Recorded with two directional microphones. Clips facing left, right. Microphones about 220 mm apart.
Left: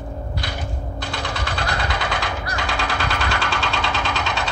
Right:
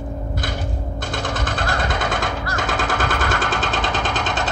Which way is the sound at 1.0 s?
50° right (ahead or behind).